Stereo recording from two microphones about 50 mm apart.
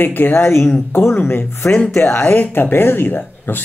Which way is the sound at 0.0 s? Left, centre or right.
Left.